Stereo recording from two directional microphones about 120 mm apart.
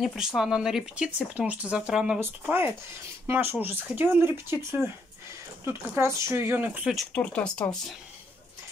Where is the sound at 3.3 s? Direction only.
20° right (ahead or behind).